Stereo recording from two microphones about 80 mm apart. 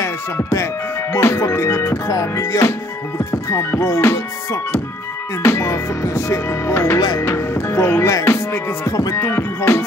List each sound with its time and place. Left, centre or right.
0.0 s music: left
1.1 s speech: left
5.4 s speech: left
8.1 s music: left
9.2 s speech: left